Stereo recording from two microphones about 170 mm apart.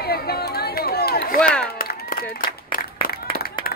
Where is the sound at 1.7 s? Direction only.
65° left (ahead or behind).